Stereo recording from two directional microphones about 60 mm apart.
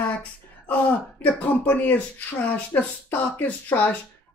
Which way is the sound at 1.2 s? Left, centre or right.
Left.